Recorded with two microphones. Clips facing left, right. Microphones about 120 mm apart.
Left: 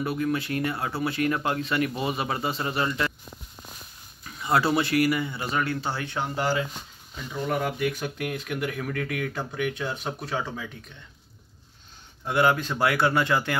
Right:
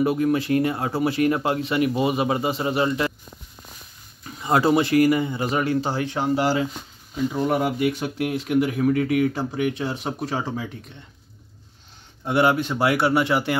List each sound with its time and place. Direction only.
0.2 s speech: 30° right (ahead or behind)
4.2 s speech: 25° right (ahead or behind)
5.9 s speech: 35° right (ahead or behind)
12.3 s speech: 20° right (ahead or behind)